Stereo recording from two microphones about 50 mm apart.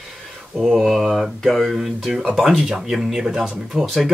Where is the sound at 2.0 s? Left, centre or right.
Centre.